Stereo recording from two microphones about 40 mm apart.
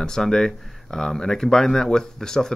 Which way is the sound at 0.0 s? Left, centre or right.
Centre.